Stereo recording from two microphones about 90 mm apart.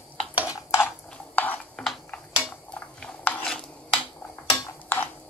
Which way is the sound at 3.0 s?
15° left (ahead or behind).